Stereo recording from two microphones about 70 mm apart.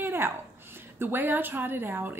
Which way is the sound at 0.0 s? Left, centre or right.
Right.